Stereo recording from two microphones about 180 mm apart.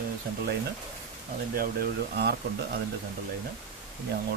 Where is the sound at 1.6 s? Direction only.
60° right (ahead or behind).